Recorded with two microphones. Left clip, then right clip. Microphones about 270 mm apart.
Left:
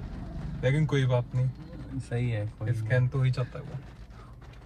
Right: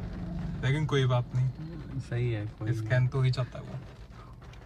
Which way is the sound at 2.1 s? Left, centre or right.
Left.